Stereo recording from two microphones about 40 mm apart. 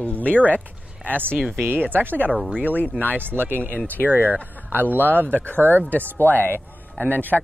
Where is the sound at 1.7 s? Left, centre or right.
Right.